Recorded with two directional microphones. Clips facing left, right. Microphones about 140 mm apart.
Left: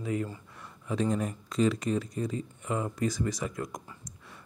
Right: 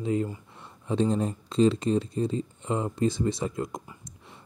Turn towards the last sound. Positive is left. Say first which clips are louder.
# right 4 dB
turn(degrees=-25)  # may be behind; listen again after turning